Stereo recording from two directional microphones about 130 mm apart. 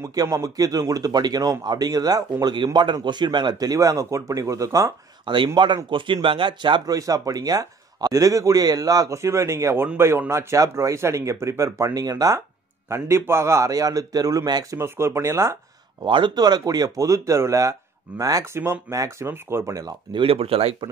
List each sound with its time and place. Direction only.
0.0 s speech: 25° right (ahead or behind)
5.2 s speech: 40° right (ahead or behind); by 15.5 s 20° right (ahead or behind)
16.0 s speech: 40° right (ahead or behind)
20.1 s speech: 45° right (ahead or behind)